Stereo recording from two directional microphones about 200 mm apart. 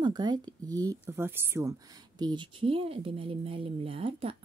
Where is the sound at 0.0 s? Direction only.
20° right (ahead or behind).